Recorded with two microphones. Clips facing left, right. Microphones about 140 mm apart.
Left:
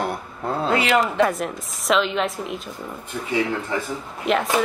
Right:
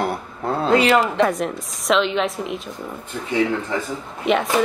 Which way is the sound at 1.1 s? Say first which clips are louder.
Right 1 dB; centre (ahead or behind).